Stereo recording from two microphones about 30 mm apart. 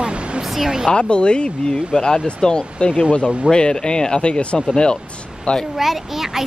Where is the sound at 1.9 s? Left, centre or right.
Left.